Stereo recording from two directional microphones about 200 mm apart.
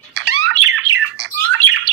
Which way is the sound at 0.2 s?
75° right (ahead or behind).